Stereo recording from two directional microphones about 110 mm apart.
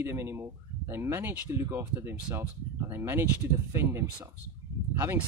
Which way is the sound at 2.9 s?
20° right (ahead or behind).